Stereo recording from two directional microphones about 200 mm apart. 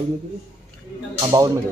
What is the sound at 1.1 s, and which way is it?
Speech, 20° right (ahead or behind).